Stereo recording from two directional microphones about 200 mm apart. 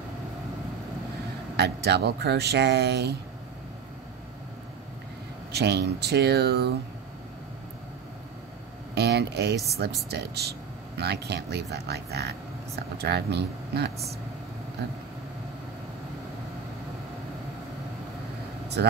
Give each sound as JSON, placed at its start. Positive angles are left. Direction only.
{"t": 1.6, "sound": "speech", "side_deg": -55}
{"t": 5.5, "sound": "speech", "side_deg": -55}
{"t": 8.9, "sound": "speech", "side_deg": -55}
{"t": 18.8, "sound": "speech", "side_deg": -55}